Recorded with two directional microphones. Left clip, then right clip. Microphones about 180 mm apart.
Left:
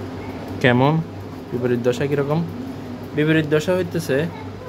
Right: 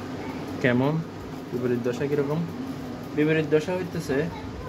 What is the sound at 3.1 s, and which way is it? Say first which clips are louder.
Speech: left 4 dB; 55° left (ahead or behind).